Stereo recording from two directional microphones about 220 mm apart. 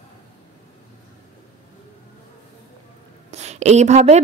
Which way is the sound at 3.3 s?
30° right (ahead or behind).